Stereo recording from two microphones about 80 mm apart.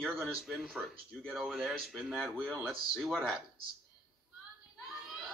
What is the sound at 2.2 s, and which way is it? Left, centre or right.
Speech, right.